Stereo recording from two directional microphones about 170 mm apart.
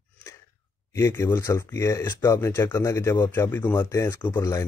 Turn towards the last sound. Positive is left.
turn(degrees=15)  # may be behind; listen again after turning